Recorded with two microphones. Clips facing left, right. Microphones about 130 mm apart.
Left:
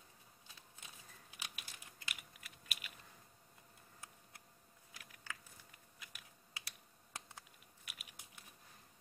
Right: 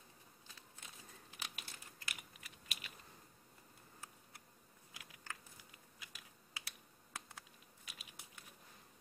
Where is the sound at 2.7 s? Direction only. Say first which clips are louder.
Left 1 dB; 30° right (ahead or behind).